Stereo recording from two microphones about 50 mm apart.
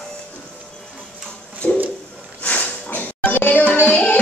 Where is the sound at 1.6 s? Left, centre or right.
Left.